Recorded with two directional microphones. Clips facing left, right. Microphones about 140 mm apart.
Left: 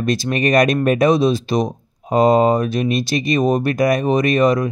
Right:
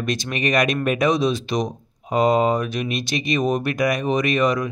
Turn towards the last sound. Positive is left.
turn(degrees=35)  # may be behind; listen again after turning